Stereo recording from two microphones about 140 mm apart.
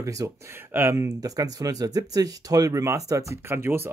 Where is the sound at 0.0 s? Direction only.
25° right (ahead or behind).